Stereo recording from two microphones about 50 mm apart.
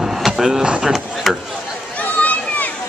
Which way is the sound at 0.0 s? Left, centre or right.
Centre.